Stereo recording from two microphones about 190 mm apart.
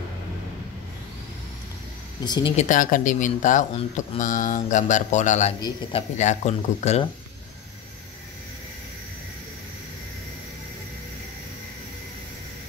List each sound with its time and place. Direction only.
2.2 s speech: 20° left (ahead or behind)
2.5 s speech: 40° left (ahead or behind)